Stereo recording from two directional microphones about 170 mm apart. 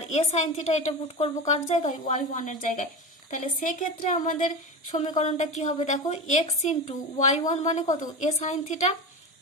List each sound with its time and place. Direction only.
0.0 s a woman's voice: 40° left (ahead or behind)